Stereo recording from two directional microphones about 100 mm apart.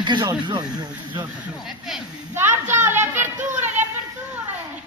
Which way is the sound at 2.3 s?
25° right (ahead or behind).